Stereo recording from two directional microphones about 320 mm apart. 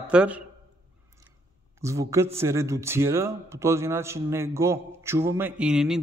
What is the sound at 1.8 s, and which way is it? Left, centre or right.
Speech, centre.